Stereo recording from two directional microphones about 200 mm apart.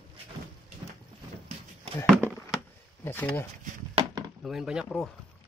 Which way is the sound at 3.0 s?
10° left (ahead or behind).